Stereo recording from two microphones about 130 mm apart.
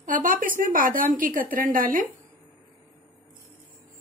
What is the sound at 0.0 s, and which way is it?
A woman's voice, 90° right.